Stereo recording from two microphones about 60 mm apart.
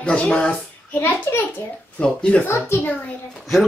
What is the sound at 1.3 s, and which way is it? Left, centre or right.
Speech, left.